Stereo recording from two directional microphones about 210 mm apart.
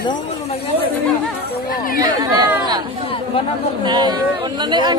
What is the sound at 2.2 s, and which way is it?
Speech, 20° right (ahead or behind).